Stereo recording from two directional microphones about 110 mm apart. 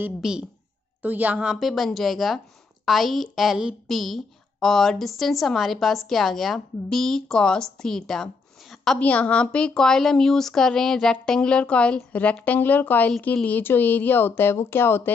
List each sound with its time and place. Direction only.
0.2 s a woman's voice: 5° right (ahead or behind); by 15.0 s 20° left (ahead or behind)